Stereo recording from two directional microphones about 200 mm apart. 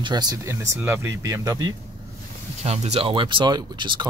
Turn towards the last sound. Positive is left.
turn(degrees=-25)  # may be behind; listen again after turning